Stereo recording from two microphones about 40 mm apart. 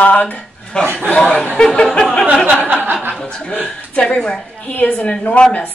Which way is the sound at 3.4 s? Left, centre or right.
Left.